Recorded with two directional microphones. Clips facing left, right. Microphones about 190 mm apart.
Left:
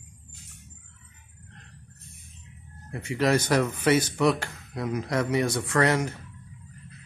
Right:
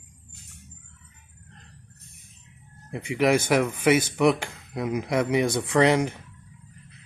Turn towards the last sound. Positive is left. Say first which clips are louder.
# right 4 dB
turn(degrees=-15)  # may be behind; listen again after turning